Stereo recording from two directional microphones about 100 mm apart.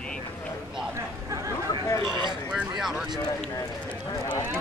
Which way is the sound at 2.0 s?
50° right (ahead or behind).